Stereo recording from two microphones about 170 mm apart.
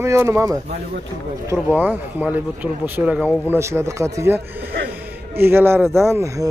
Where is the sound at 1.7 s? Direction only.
10° right (ahead or behind).